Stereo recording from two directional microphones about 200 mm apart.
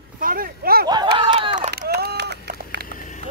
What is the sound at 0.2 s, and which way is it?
Speech, 45° right (ahead or behind).